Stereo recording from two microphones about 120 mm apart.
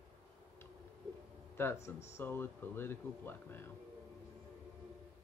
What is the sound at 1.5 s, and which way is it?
Speech, 20° left (ahead or behind).